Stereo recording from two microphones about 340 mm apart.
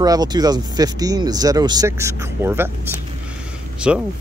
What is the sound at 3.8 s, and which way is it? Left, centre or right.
Speech, centre.